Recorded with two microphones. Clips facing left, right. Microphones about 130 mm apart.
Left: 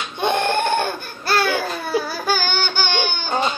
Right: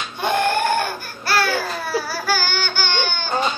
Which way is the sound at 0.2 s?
20° left (ahead or behind).